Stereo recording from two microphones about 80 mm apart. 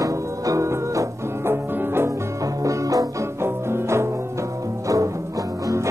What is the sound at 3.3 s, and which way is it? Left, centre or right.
Music, right.